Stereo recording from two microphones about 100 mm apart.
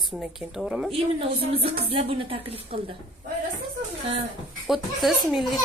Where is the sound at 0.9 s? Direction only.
80° right.